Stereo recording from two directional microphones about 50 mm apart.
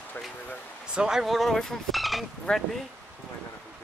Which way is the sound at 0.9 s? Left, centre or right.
Centre.